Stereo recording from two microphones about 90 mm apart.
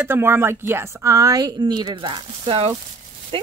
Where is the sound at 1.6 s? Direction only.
55° right (ahead or behind); by 2.6 s 75° right (ahead or behind).